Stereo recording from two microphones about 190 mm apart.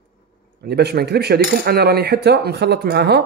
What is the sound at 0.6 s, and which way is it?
Cutlery, 55° right (ahead or behind).